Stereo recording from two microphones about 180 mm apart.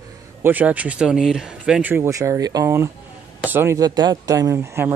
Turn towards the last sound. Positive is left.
turn(degrees=-15)  # may be behind; listen again after turning